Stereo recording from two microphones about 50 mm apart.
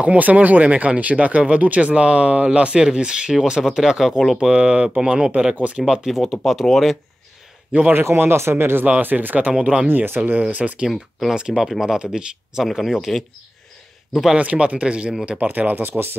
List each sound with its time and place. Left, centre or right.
0.0 s speech: right
5.9 s speech: centre
7.9 s speech: right
9.0 s speech: right
9.6 s speech: right
9.8 s speech: right
10.5 s speech: right
10.9 s speech: centre
12.6 s speech: centre
14.3 s speech: right
15.3 s speech: right